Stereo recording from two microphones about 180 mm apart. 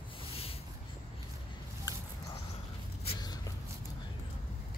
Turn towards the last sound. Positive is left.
turn(degrees=20)  # may be behind; listen again after turning